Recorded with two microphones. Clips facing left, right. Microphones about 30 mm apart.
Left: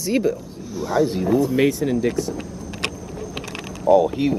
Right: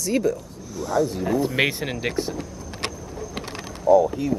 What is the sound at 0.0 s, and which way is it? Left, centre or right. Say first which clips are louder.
Speech: left 2 dB; centre.